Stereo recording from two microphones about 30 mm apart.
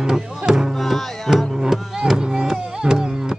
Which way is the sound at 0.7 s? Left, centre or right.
Centre.